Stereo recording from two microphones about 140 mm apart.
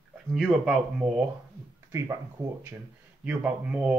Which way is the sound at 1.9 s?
20° right (ahead or behind).